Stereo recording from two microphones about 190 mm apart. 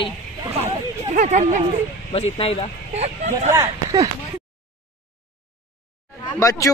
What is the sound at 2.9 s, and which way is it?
Speech, 35° right (ahead or behind).